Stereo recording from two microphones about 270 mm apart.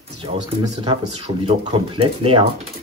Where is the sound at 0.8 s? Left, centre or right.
Centre.